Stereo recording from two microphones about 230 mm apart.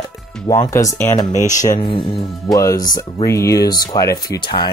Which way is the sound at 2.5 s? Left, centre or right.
Centre.